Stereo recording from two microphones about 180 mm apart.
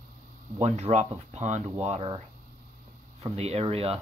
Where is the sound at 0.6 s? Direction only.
40° right (ahead or behind).